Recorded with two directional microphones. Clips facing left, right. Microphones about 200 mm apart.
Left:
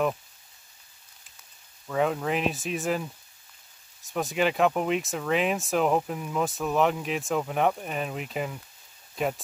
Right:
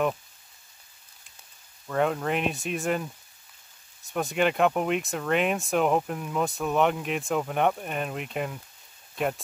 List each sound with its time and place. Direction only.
1.9 s speech: centre (ahead or behind)